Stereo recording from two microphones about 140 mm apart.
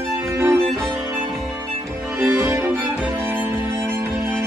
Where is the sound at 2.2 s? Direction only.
20° right (ahead or behind).